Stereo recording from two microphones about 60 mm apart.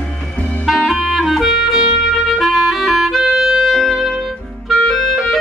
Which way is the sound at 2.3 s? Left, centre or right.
Centre.